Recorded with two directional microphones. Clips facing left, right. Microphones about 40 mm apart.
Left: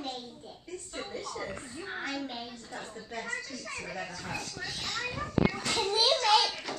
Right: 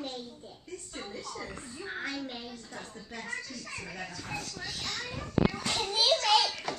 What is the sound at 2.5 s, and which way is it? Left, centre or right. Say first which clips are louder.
A woman's voice: left 2 dB; left.